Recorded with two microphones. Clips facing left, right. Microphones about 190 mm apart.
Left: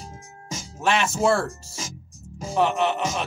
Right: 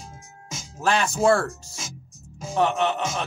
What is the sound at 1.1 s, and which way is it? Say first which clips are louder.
Speech: right 3 dB; centre (ahead or behind).